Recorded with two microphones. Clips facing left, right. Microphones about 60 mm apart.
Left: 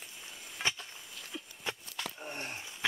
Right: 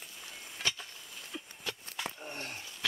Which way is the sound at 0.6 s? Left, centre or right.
Centre.